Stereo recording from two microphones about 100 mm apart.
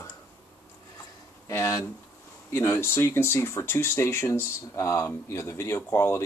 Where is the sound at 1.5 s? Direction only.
30° left (ahead or behind).